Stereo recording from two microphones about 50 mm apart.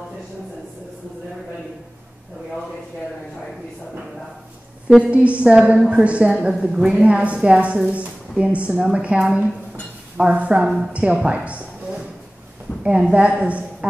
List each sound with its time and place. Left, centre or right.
4.8 s a woman's voice: right
12.8 s a woman's voice: right